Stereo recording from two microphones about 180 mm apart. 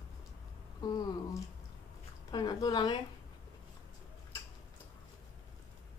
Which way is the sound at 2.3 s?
20° left (ahead or behind).